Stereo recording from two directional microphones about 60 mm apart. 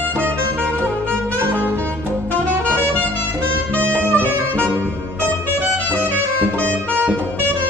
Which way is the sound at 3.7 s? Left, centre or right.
Left.